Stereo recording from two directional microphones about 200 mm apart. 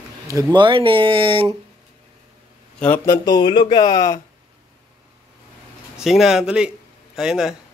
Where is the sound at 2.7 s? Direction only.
10° left (ahead or behind).